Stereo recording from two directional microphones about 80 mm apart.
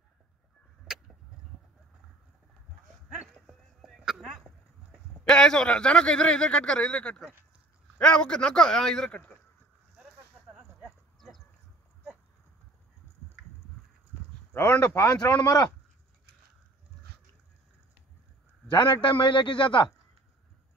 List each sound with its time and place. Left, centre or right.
3.2 s dog: centre
4.9 s a man's voice: centre
11.1 s chicken: centre
14.5 s speech: left
15.4 s speech: left
18.7 s a man's voice: left